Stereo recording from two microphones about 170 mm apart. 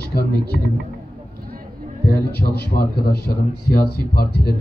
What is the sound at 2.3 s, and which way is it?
A man's voice, 70° left (ahead or behind).